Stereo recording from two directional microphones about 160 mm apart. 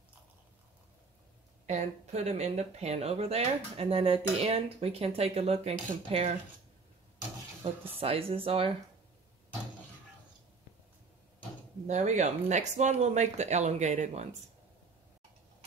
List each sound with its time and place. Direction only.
1.7 s speech: 45° right (ahead or behind)
8.0 s speech: 35° right (ahead or behind)
11.9 s speech: 45° right (ahead or behind)